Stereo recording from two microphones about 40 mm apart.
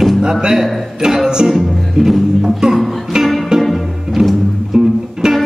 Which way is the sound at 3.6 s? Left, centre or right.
Centre.